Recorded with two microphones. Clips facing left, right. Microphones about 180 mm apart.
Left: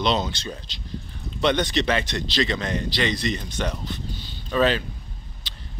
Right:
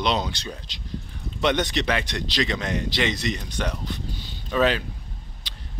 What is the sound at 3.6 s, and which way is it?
Speech, 5° right (ahead or behind).